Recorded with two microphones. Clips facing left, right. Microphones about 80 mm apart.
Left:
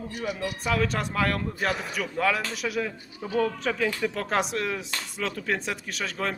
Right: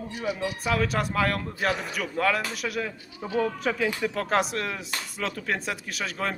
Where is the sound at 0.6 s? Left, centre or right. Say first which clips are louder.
Even; centre.